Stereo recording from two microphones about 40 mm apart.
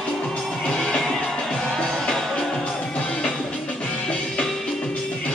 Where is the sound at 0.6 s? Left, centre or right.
Left.